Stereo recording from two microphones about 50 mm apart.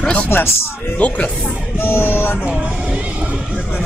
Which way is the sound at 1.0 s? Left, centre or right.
Left.